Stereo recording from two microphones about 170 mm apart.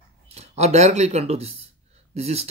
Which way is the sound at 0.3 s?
40° right (ahead or behind).